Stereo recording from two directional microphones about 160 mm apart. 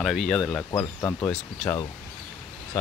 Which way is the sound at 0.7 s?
20° left (ahead or behind).